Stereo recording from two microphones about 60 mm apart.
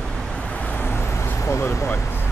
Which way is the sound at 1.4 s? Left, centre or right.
Left.